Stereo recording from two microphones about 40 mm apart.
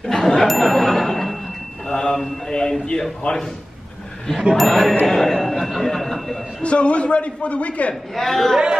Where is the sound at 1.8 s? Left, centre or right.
Centre.